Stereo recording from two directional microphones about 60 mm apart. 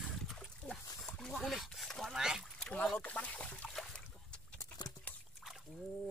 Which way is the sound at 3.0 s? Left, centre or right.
Left.